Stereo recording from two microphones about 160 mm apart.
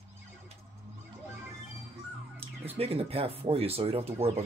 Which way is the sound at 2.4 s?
40° right (ahead or behind).